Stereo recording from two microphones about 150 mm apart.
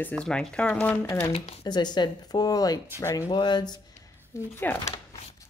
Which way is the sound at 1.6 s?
30° left (ahead or behind).